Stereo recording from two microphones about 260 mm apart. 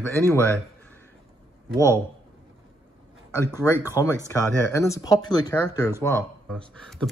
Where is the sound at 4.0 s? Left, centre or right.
Centre.